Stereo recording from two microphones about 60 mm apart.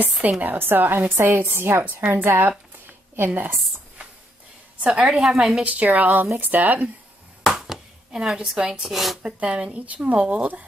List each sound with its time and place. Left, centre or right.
0.4 s a woman's voice: right
2.9 s a sound: right
4.8 s a woman's voice: centre
5.6 s speech: right
7.4 s chop: centre
8.5 s a woman's voice: centre
9.2 s speech: centre